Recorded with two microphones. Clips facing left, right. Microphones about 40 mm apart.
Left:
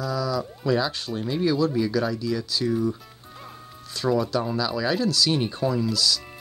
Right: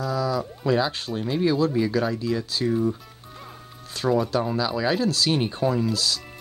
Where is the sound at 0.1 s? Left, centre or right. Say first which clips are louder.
Right 1 dB; right.